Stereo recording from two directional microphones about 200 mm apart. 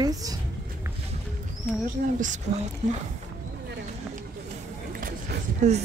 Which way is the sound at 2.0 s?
45° right (ahead or behind).